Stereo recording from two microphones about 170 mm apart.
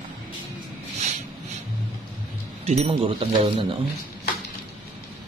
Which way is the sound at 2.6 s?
35° right (ahead or behind).